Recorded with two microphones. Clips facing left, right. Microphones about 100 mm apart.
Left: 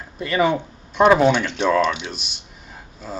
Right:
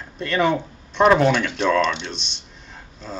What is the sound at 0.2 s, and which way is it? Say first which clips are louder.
Speech: left 1 dB; 5° left (ahead or behind).